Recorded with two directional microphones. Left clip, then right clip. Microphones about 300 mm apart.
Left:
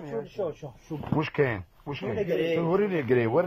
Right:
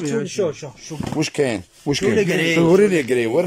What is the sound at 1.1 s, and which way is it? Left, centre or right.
Speech, centre.